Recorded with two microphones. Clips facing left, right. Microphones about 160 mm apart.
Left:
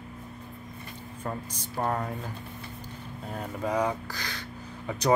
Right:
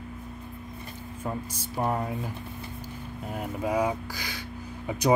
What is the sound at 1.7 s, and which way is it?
Speech, 10° right (ahead or behind).